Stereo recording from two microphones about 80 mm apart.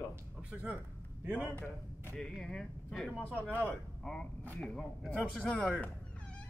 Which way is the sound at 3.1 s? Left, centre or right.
Centre.